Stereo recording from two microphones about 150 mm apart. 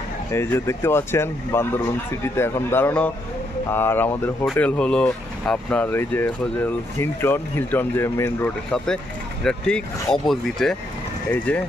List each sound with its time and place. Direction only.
0.3 s speech: 20° left (ahead or behind)
8.7 s speech: 5° left (ahead or behind)